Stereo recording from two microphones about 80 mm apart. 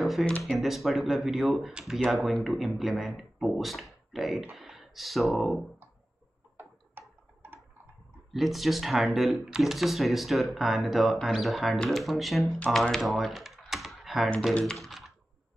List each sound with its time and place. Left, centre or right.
0.0 s a sound: centre
0.4 s speech: centre
6.5 s a sound: right
8.3 s speech: centre
12.7 s typing: centre
14.6 s computer keyboard: centre